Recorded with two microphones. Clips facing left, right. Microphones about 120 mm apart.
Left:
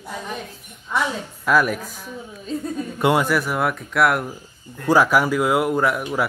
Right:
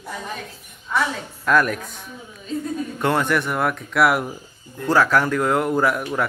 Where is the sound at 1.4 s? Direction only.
5° left (ahead or behind).